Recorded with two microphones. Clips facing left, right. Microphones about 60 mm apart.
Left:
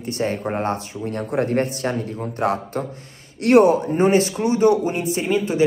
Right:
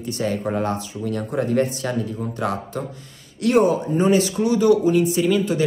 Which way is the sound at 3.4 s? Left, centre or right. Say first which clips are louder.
Left 4 dB; left.